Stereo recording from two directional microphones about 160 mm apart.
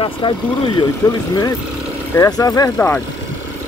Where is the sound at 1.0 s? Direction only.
15° left (ahead or behind).